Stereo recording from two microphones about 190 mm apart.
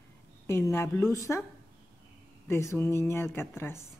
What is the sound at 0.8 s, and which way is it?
Speech, centre (ahead or behind).